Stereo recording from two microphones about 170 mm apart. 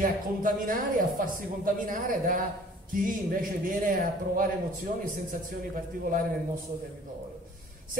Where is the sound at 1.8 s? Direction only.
55° right (ahead or behind).